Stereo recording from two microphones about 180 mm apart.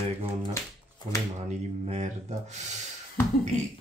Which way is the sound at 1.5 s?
40° right (ahead or behind).